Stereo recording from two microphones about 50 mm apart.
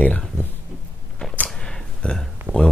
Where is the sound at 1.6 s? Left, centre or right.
Centre.